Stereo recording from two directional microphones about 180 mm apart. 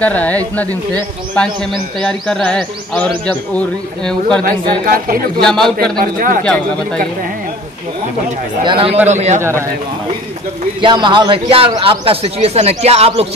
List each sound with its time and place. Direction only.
0.0 s a man's voice: 10° left (ahead or behind)
4.8 s speech: 55° right (ahead or behind)
5.4 s a man's voice: 5° left (ahead or behind)
5.9 s speech: 50° right (ahead or behind)
8.6 s a man's voice: 30° right (ahead or behind)
9.4 s a man's voice: 15° right (ahead or behind)
10.8 s speech: 25° right (ahead or behind)